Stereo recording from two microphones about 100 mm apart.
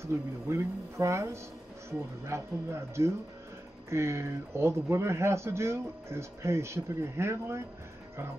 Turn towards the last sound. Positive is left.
turn(degrees=-30)  # may be behind; listen again after turning